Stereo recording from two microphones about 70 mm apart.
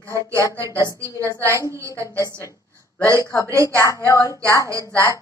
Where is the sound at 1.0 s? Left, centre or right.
Right.